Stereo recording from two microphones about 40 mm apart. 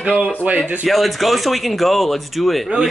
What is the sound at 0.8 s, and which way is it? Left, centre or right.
Speech, centre.